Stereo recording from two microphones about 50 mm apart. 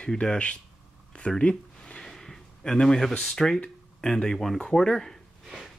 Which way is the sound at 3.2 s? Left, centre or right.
Centre.